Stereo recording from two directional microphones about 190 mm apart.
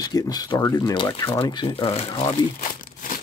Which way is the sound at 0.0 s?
20° left (ahead or behind).